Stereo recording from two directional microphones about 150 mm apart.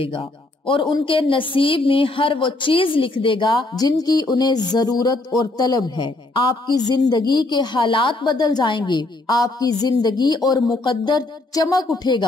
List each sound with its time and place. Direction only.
0.0 s a woman's voice: 35° left (ahead or behind)